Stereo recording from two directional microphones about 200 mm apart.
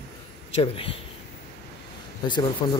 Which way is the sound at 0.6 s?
30° left (ahead or behind).